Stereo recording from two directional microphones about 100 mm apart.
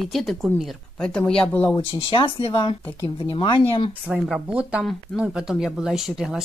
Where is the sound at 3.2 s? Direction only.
55° left (ahead or behind).